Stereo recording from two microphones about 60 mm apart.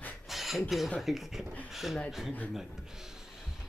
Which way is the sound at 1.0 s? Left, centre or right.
Centre.